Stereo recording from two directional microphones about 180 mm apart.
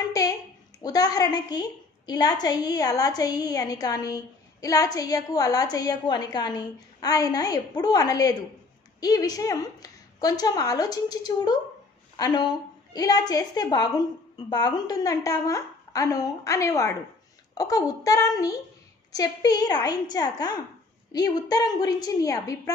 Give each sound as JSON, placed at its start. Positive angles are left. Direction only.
{"t": 0.8, "sound": "a woman's voice", "side_deg": 20}